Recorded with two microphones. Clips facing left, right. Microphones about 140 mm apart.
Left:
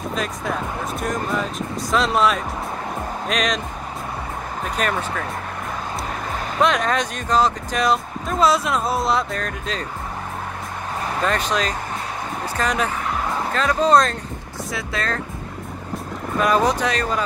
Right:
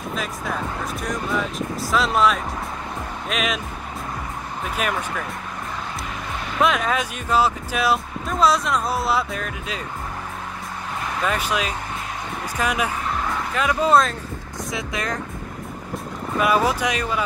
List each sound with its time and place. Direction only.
0.1 s speech: centre (ahead or behind)
1.9 s speech: centre (ahead or behind)
4.6 s speech: 10° right (ahead or behind)
6.6 s speech: 5° right (ahead or behind)
11.2 s speech: 10° right (ahead or behind)
14.7 s speech: 20° right (ahead or behind)
16.3 s speech: 5° right (ahead or behind)